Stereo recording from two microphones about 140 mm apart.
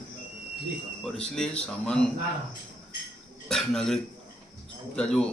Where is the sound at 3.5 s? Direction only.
5° left (ahead or behind).